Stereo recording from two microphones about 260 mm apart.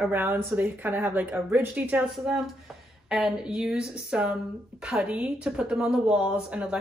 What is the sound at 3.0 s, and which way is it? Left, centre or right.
Speech, centre.